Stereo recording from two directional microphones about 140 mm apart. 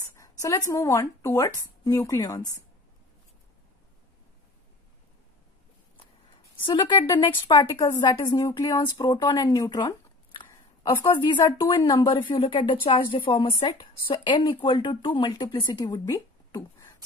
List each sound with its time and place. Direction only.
0.1 s speech: 25° left (ahead or behind)
6.6 s speech: 35° left (ahead or behind)
7.4 s speech: 25° left (ahead or behind)